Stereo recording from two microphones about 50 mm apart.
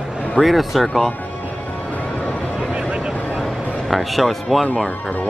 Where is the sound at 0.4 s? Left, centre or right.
Centre.